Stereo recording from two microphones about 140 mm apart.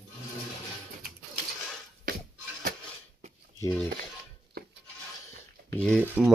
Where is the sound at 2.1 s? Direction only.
90° right.